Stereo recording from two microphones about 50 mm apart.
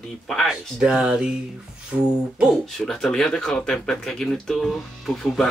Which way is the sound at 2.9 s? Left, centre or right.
Centre.